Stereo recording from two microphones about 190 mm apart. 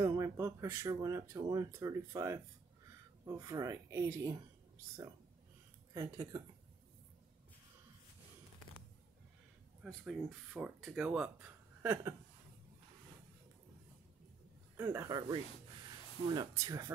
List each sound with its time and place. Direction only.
0.0 s speech: 20° right (ahead or behind)
5.9 s speech: 15° right (ahead or behind)
9.8 s speech: centre (ahead or behind)
14.8 s speech: 15° right (ahead or behind)